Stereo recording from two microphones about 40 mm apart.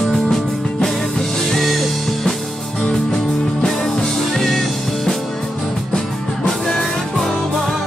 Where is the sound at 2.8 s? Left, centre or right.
Centre.